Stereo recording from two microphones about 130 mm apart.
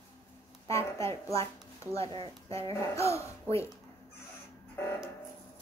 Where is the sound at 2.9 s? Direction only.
20° left (ahead or behind).